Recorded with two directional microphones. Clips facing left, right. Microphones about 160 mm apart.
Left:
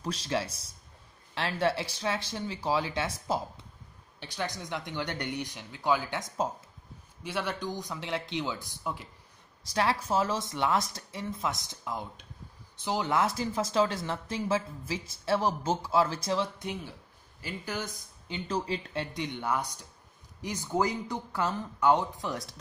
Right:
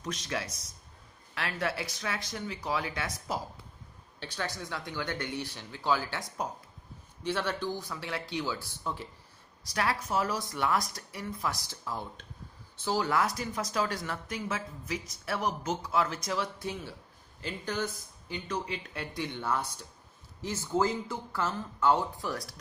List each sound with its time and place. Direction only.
0.0 s speech: 30° left (ahead or behind)
4.2 s speech: 15° left (ahead or behind)
7.2 s speech: 10° left (ahead or behind)
9.7 s speech: 25° left (ahead or behind); by 17.9 s 10° left (ahead or behind)
18.3 s speech: 30° left (ahead or behind)